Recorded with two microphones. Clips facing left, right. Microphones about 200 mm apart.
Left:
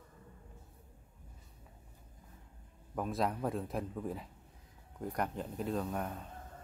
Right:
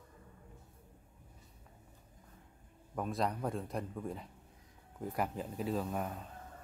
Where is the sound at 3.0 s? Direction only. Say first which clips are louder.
Left 1 dB; centre (ahead or behind).